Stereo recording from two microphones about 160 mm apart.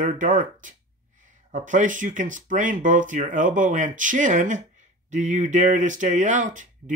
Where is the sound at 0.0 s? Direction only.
55° right (ahead or behind).